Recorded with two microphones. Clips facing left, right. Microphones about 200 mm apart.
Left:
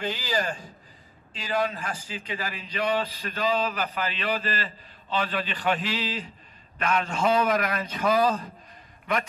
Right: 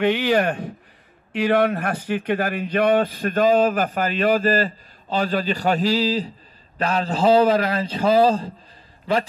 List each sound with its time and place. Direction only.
0.0 s a man's voice: 65° right (ahead or behind); by 9.2 s 30° right (ahead or behind)